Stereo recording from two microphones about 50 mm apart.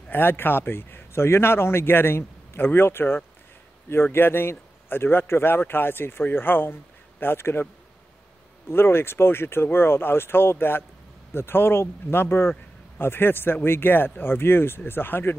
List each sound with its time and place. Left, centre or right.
0.1 s speech: left
8.6 s speech: left